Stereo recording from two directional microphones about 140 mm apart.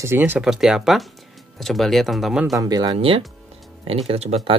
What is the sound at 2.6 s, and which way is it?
Speech, 30° right (ahead or behind).